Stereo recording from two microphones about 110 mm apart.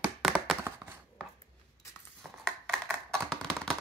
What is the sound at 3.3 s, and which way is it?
Typewriter, 5° left (ahead or behind).